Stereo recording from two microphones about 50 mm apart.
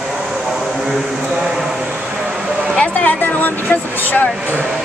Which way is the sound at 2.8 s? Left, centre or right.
Left.